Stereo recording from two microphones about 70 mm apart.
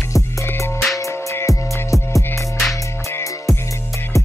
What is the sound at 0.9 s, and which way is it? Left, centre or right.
Music, left.